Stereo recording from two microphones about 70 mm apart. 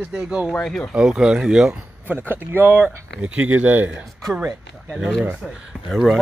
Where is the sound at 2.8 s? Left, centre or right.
Centre.